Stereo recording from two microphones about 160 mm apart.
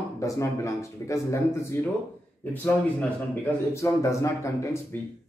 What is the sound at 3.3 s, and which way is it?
Speech, 20° left (ahead or behind).